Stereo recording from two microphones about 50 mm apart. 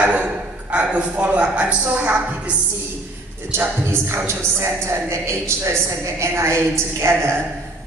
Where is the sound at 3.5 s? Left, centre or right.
Right.